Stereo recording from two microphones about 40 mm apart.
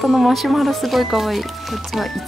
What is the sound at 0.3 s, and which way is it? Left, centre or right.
Speech, centre.